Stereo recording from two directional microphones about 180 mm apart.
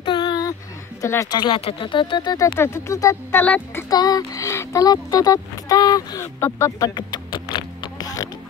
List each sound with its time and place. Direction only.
0.0 s a sound: 25° left (ahead or behind)
1.0 s speech: 15° left (ahead or behind)
3.9 s speech: 20° left (ahead or behind)